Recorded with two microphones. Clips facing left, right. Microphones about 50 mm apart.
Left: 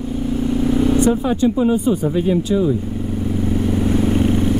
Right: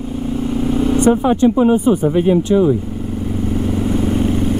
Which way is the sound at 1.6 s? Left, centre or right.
Right.